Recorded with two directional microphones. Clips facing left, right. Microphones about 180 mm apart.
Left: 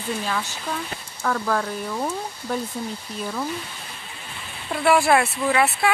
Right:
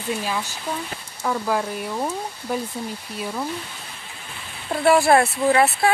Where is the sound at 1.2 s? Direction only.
15° right (ahead or behind).